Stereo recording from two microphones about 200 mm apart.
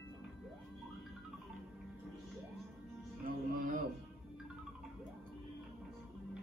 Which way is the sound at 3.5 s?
45° right (ahead or behind).